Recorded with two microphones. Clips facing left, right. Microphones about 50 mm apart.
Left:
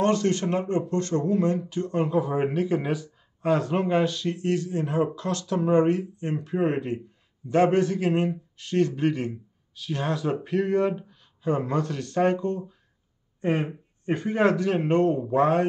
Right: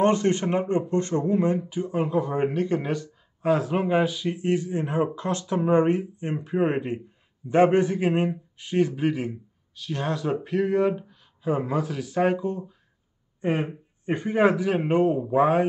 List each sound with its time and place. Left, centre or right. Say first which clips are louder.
0.0 s a man's voice: right 2 dB; right